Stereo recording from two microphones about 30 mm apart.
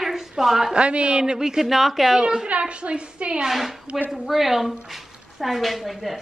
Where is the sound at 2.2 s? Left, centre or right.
Right.